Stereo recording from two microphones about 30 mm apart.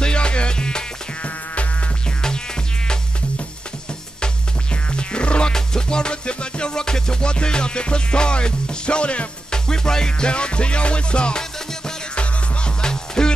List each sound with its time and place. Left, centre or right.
0.0 s music: left
1.2 s music: left
4.9 s music: left
5.5 s music: left
9.5 s music: left
10.3 s music: left
12.8 s music: left